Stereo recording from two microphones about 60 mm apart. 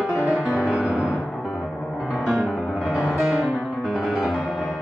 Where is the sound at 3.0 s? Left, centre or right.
Centre.